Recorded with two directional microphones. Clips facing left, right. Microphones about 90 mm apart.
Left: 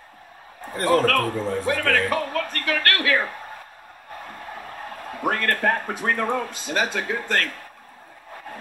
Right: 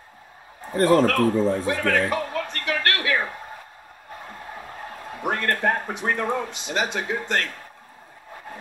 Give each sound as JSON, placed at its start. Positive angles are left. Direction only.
{"t": 0.8, "sound": "speech", "side_deg": -25}
{"t": 5.2, "sound": "speech", "side_deg": -20}